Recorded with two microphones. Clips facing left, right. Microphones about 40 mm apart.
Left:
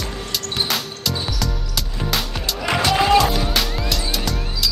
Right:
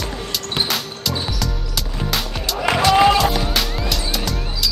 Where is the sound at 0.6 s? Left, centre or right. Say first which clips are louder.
Left 1 dB; centre.